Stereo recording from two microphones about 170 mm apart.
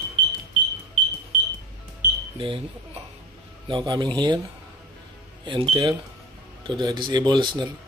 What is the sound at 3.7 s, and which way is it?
Speech, 30° right (ahead or behind).